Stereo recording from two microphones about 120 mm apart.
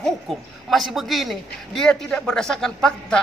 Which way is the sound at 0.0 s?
Centre (ahead or behind).